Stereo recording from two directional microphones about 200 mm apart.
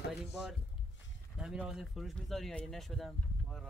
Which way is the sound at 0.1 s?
Centre (ahead or behind).